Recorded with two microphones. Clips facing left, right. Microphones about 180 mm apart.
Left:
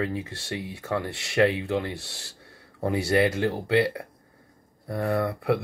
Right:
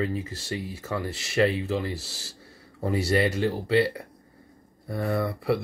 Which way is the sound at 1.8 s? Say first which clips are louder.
Right 1 dB; 65° left (ahead or behind).